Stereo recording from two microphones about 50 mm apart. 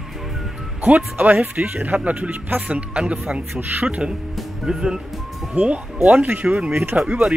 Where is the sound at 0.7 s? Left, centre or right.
Right.